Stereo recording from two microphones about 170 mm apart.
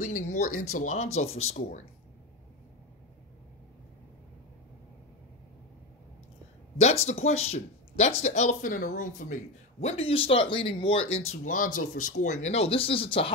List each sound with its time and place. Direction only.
0.0 s speech: 45° left (ahead or behind)
6.8 s speech: 40° left (ahead or behind)